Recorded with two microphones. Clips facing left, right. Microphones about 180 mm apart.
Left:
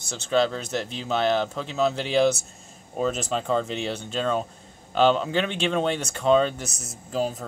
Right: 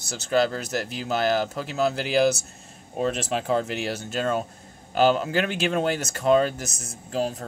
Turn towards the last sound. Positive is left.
turn(degrees=0)  # may be behind; listen again after turning